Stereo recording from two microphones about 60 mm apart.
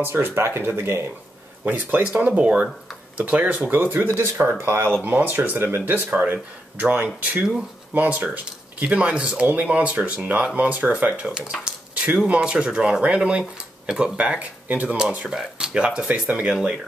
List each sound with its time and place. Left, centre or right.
0.0 s speech: right
1.7 s speech: right
2.0 s speech: centre
11.2 s speech: centre
15.0 s speech: centre